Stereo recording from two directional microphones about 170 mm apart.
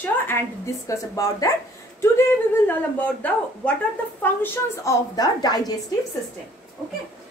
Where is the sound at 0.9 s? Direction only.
20° left (ahead or behind).